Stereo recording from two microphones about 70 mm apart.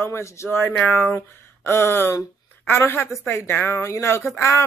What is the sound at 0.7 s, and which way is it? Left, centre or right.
Speech, left.